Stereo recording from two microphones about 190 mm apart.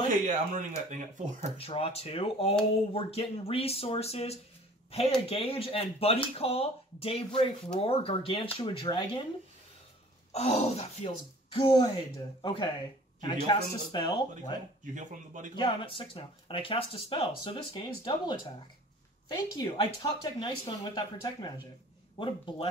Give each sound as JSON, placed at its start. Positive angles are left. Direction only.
{"t": 0.1, "sound": "speech", "side_deg": -40}
{"t": 1.6, "sound": "speech", "side_deg": 30}
{"t": 10.3, "sound": "speech", "side_deg": 35}
{"t": 11.6, "sound": "speech", "side_deg": 25}
{"t": 15.0, "sound": "speech", "side_deg": -40}
{"t": 15.5, "sound": "speech", "side_deg": 25}
{"t": 19.3, "sound": "speech", "side_deg": 20}